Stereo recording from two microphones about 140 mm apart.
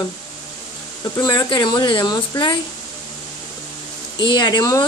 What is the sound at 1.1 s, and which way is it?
A woman's voice, 30° left (ahead or behind).